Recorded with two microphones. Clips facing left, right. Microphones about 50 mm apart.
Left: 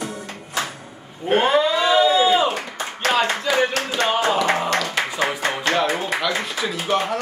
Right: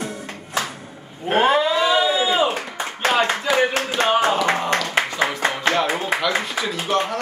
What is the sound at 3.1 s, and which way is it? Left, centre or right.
Clapping, centre.